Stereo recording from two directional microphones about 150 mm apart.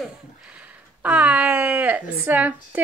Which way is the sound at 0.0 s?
5° right (ahead or behind).